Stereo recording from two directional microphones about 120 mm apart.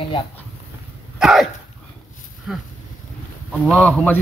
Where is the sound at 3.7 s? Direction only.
10° left (ahead or behind).